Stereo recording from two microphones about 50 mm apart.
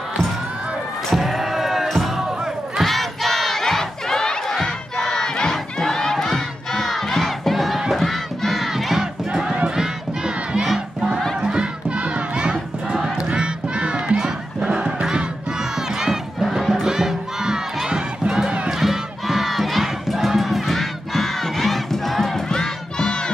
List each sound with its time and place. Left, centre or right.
1.1 s a sound: centre
1.9 s music: centre
2.4 s battle cry: centre
9.3 s crowd: centre
11.4 s music: centre
12.9 s music: centre
13.3 s crowd: right
14.6 s music: centre
15.7 s crowd: centre
18.8 s crowd: centre